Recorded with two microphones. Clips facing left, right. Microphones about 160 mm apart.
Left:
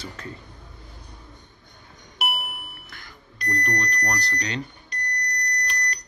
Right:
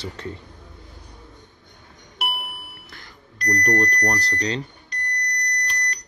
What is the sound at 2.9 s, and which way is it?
Alarm clock, 35° right (ahead or behind).